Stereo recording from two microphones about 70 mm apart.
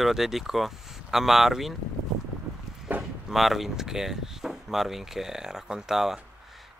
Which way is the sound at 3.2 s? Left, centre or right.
Centre.